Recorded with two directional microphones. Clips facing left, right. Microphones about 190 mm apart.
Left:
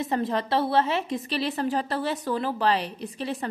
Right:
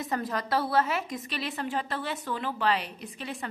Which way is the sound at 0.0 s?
25° left (ahead or behind).